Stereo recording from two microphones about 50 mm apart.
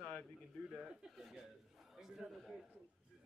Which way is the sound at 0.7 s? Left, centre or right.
Centre.